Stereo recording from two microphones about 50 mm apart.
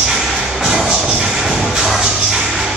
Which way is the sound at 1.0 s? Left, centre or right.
Right.